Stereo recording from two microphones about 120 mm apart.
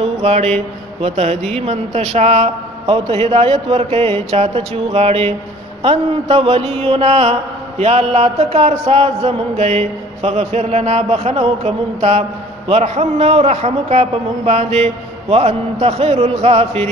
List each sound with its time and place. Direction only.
0.0 s speech: 55° right (ahead or behind)
1.0 s mantra: 60° right (ahead or behind)